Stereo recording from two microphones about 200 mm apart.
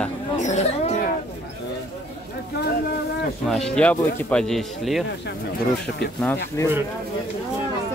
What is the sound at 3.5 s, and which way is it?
Speech, 5° left (ahead or behind).